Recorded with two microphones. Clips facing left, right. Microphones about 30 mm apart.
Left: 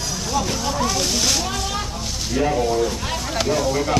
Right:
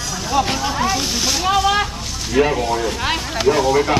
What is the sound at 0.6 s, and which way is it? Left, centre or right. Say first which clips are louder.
Speech: right 3 dB; right.